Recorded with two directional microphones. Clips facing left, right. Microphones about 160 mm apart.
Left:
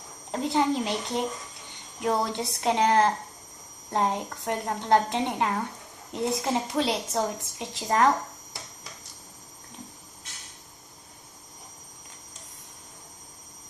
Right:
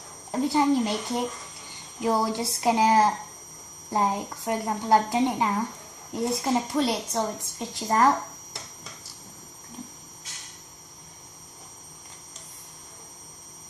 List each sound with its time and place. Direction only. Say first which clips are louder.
0.3 s a woman's voice: right 3 dB; centre (ahead or behind)